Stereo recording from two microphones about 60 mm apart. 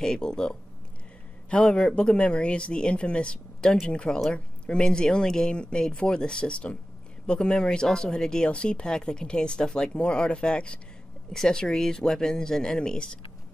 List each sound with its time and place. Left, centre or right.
0.0 s speech: centre